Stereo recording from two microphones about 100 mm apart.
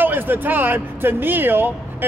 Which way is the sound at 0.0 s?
20° right (ahead or behind).